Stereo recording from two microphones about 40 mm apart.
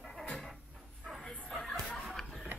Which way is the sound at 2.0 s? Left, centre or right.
Centre.